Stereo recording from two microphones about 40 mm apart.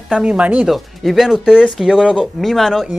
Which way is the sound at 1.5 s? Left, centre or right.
Centre.